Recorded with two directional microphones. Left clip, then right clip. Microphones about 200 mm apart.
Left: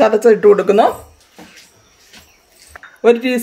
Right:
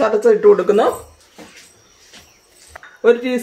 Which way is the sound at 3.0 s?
55° left (ahead or behind).